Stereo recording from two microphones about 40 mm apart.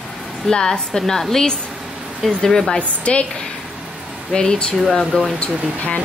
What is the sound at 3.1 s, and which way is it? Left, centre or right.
Speech, left.